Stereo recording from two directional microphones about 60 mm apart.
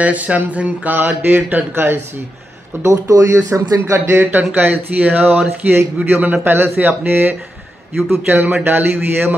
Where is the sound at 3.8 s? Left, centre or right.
Right.